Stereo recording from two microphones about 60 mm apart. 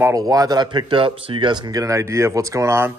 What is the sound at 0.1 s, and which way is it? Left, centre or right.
Speech, right.